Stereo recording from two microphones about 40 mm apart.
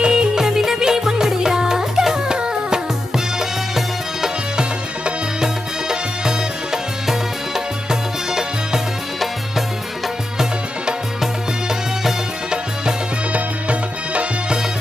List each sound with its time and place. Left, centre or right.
0.0 s music: centre
13.3 s music: right